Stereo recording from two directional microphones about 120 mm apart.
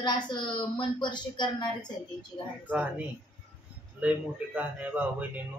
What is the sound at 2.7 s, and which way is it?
A man's voice, 15° right (ahead or behind).